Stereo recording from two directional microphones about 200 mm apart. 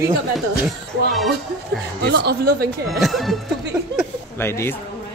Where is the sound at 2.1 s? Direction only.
55° right (ahead or behind).